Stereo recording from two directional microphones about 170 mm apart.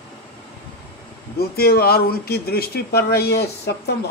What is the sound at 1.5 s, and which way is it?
Speech, 65° left (ahead or behind).